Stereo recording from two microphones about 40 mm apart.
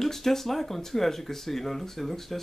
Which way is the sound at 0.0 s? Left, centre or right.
Centre.